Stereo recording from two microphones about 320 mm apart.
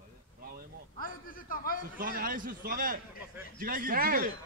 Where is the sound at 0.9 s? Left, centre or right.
Left.